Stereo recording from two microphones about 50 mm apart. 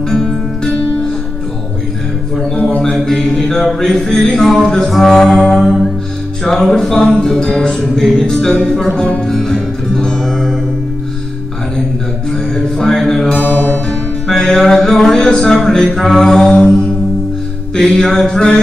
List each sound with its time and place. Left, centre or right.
0.1 s music: centre
2.8 s mantra: centre
3.3 s music: centre
7.0 s music: centre
12.3 s music: centre
13.4 s music: left
13.8 s music: centre
17.7 s music: centre